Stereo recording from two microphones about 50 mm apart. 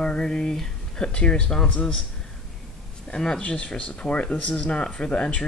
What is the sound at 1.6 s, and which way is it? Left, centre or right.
Speech, left.